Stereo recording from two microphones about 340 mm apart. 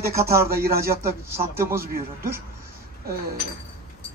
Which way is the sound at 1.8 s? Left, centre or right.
Right.